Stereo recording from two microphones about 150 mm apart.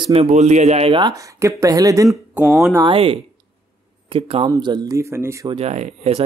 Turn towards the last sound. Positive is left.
turn(degrees=-45)  # may be behind; listen again after turning